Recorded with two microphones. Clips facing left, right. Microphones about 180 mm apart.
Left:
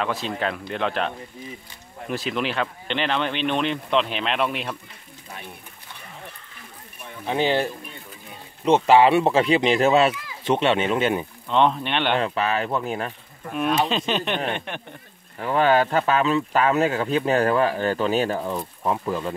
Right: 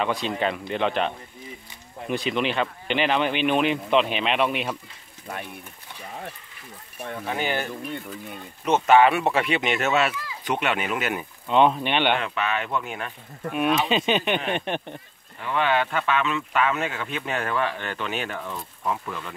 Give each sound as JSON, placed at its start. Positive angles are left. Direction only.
{"t": 0.0, "sound": "speech", "side_deg": 0}
{"t": 7.2, "sound": "speech", "side_deg": 25}
{"t": 11.4, "sound": "speech", "side_deg": -5}
{"t": 12.2, "sound": "speech", "side_deg": 35}
{"t": 13.8, "sound": "speech", "side_deg": -5}
{"t": 14.5, "sound": "speech", "side_deg": -20}
{"t": 15.4, "sound": "speech", "side_deg": 40}